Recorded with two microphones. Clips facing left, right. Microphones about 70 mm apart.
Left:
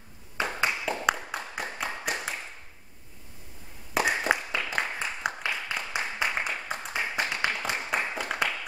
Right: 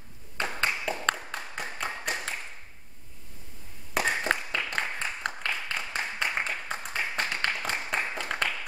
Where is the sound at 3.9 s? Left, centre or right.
Centre.